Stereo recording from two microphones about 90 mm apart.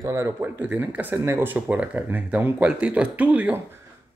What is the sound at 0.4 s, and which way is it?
Speech, 20° right (ahead or behind).